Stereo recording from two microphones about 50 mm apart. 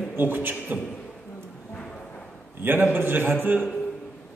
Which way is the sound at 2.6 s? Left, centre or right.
Right.